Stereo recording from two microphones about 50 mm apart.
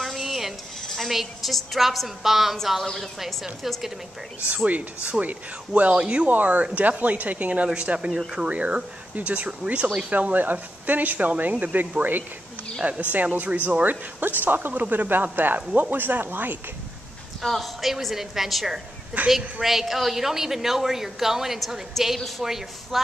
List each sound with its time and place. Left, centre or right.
0.0 s a woman's voice: centre
4.6 s speech: right
17.4 s a woman's voice: centre
19.1 s speech: right
19.6 s speech: centre